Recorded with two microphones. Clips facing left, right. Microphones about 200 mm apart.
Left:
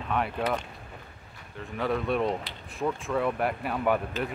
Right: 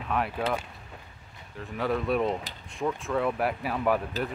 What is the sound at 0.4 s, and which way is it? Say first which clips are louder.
Speech: left 1 dB; 5° right (ahead or behind).